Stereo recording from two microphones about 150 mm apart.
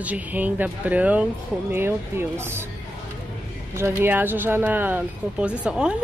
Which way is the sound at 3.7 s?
15° right (ahead or behind).